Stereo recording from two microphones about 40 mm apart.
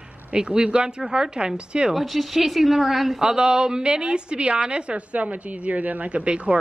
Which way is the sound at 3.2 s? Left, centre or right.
Right.